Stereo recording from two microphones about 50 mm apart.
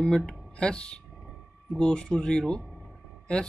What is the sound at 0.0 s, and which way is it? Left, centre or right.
Speech, centre.